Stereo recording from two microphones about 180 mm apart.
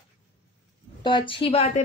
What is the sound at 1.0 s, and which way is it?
Speech, 25° left (ahead or behind).